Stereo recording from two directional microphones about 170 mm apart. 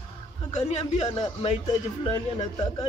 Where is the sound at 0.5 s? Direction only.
40° left (ahead or behind).